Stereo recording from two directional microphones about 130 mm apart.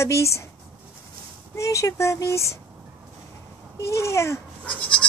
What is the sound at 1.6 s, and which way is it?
Speech, 25° left (ahead or behind).